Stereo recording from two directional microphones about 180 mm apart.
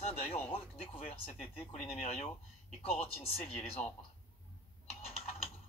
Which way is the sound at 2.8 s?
35° left (ahead or behind).